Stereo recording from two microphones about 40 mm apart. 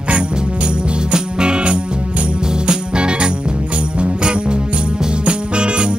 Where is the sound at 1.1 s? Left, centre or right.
Right.